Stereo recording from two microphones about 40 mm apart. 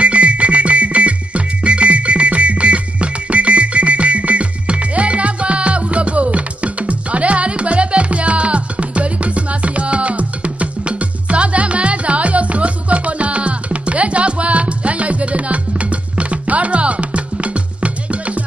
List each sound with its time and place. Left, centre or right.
0.0 s music: right